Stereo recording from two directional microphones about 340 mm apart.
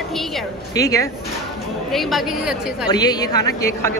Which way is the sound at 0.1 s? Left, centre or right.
Centre.